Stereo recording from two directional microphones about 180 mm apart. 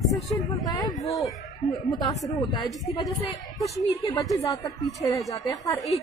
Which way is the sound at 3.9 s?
20° left (ahead or behind).